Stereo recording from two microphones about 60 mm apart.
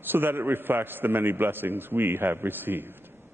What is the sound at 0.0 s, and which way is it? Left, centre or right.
A man's voice, right.